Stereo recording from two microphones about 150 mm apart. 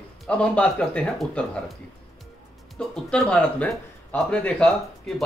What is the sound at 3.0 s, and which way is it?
Speech, 5° left (ahead or behind).